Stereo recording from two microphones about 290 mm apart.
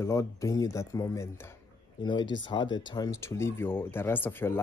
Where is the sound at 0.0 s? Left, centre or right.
Centre.